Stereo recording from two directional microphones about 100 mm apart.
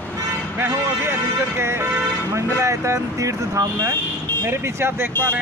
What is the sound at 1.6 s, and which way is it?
Speech, 25° right (ahead or behind).